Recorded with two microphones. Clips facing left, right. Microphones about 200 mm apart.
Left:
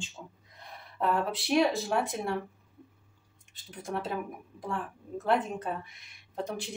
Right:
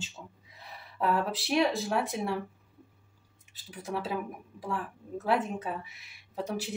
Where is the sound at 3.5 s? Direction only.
5° right (ahead or behind).